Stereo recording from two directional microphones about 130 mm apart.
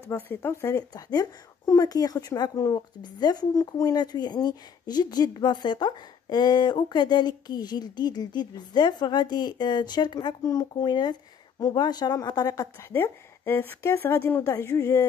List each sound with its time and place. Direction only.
0.1 s speech: 20° left (ahead or behind)
12.9 s a woman's voice: 15° left (ahead or behind)